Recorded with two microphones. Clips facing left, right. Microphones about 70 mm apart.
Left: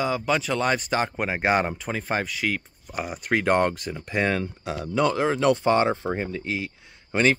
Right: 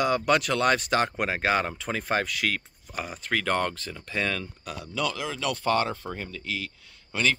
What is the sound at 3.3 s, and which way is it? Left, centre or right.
Speech, left.